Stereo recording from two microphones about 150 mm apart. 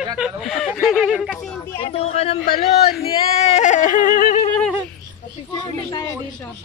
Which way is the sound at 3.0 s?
45° left (ahead or behind).